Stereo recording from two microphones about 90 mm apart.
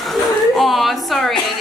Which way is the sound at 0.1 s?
Centre (ahead or behind).